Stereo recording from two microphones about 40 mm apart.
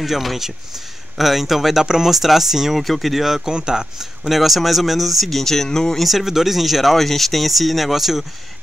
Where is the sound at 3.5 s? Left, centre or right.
Centre.